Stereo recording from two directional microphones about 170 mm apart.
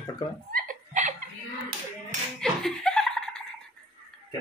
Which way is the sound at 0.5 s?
50° right (ahead or behind).